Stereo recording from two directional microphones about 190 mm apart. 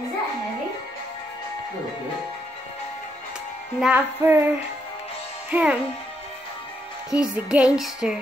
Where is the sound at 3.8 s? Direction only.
10° right (ahead or behind).